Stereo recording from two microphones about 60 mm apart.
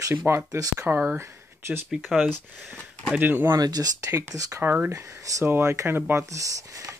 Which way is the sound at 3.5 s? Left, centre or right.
Right.